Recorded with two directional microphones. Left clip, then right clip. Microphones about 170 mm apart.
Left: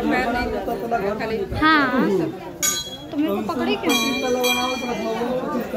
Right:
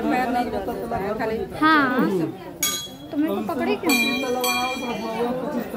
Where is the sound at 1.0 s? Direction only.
40° right (ahead or behind).